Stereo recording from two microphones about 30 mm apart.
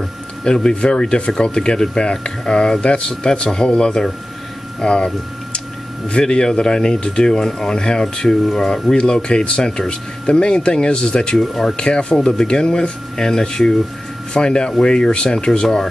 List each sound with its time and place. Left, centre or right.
0.4 s speech: left
8.5 s speech: centre
8.9 s speech: left